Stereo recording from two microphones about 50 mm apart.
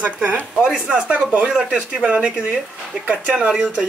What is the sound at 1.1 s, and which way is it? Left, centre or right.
Speech, right.